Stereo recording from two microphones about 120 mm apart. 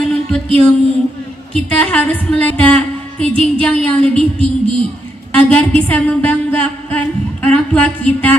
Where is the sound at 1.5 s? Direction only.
10° left (ahead or behind).